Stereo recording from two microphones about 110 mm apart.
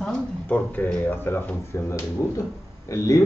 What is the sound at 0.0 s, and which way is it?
Speech, 10° left (ahead or behind).